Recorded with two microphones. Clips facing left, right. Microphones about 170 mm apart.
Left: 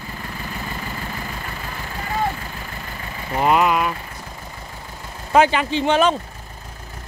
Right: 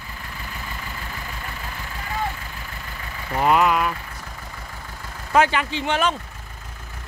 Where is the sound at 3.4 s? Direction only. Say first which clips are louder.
Left 1 dB; 10° left (ahead or behind).